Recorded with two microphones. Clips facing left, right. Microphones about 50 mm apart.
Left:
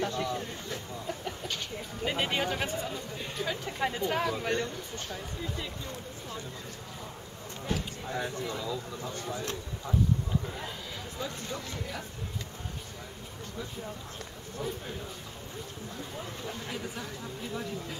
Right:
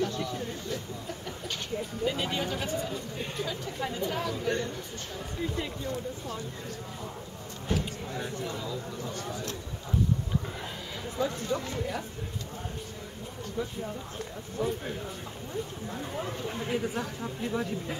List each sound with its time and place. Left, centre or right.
0.0 s a sound: left
2.0 s speech: left
8.1 s speech: left
11.1 s speech: right
14.6 s a man's voice: centre
16.4 s speech: right